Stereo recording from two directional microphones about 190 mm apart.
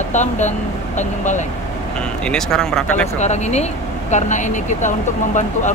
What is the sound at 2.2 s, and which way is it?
Speech, 5° left (ahead or behind).